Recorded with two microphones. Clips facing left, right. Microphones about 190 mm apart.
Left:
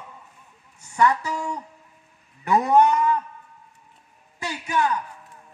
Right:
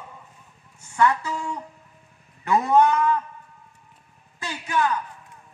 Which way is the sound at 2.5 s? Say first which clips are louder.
Left 1 dB; 15° left (ahead or behind).